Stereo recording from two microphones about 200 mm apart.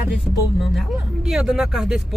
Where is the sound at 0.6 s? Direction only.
Centre (ahead or behind).